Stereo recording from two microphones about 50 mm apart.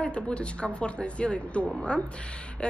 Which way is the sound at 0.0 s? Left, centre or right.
Left.